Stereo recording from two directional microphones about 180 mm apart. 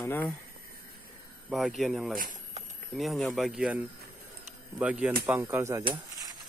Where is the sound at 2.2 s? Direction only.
45° right (ahead or behind).